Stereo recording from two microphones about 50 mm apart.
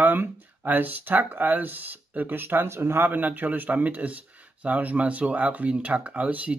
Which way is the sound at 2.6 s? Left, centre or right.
Right.